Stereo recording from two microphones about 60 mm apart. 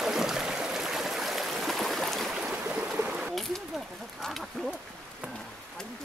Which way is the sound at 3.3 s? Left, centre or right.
Centre.